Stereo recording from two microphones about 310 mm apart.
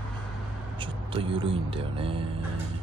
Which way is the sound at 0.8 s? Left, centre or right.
Centre.